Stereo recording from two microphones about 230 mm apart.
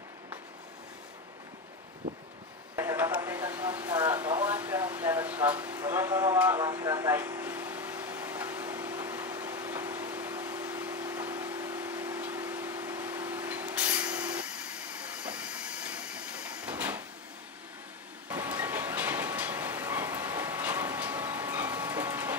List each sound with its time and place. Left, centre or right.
2.7 s a sound: centre
15.2 s train: centre
18.3 s vehicle: centre